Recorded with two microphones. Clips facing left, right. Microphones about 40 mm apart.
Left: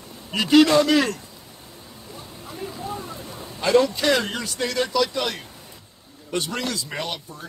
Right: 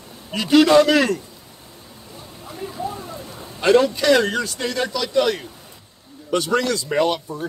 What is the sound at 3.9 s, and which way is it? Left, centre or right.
A man's voice, centre.